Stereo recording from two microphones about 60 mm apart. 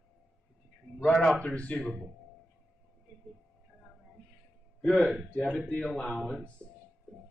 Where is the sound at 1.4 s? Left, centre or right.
Centre.